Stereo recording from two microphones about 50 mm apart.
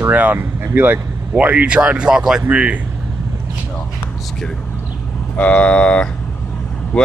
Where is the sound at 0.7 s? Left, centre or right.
Right.